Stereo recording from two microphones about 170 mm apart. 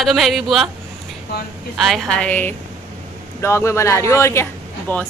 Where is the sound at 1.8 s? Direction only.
Centre (ahead or behind).